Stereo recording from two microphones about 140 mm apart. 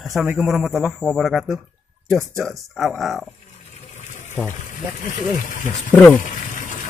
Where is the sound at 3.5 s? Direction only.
50° left (ahead or behind).